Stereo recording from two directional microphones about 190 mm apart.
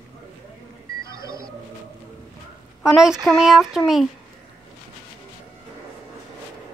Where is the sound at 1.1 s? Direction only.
20° right (ahead or behind).